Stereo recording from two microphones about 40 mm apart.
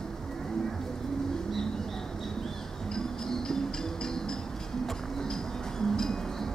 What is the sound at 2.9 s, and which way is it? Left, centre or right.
Music, centre.